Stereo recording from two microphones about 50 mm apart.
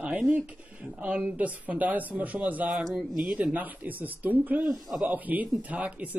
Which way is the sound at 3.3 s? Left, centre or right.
Right.